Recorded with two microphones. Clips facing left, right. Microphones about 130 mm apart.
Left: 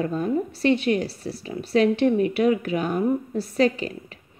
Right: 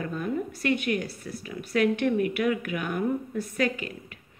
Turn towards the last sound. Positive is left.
turn(degrees=30)  # may be behind; listen again after turning